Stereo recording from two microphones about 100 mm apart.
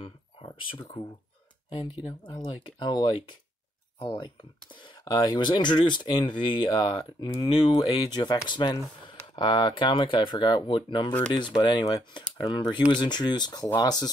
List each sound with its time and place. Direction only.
0.7 s speech: 55° left (ahead or behind)
2.4 s speech: 50° left (ahead or behind)
7.4 s speech: 70° left (ahead or behind)
8.1 s speech: 45° left (ahead or behind)